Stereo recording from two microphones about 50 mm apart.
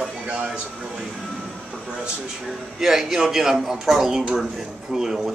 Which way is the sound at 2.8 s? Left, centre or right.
Centre.